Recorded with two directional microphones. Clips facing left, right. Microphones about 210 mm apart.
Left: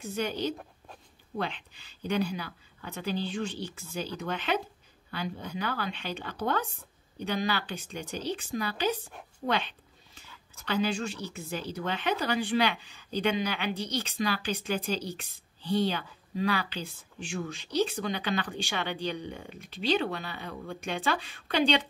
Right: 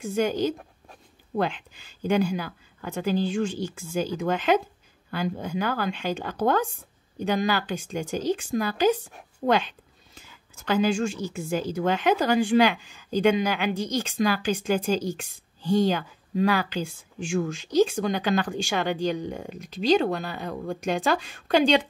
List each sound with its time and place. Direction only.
0.1 s speech: 45° right (ahead or behind)
10.6 s speech: 45° right (ahead or behind)